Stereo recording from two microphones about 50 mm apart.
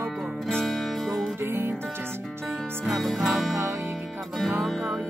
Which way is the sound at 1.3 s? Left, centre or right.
Right.